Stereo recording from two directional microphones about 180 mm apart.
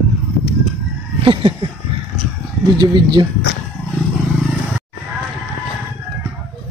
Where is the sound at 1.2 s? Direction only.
30° right (ahead or behind).